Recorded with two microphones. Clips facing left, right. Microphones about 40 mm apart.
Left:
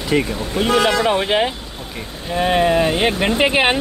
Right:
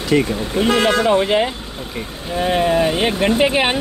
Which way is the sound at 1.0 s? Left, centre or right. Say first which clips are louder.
Right 2 dB; left.